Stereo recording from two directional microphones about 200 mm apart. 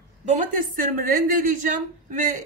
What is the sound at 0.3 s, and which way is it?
A woman's voice, 45° right (ahead or behind).